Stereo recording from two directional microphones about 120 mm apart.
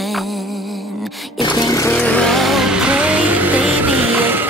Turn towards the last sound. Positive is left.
turn(degrees=-15)  # may be behind; listen again after turning